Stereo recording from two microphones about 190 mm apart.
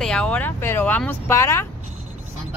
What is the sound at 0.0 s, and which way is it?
Speech, 5° left (ahead or behind).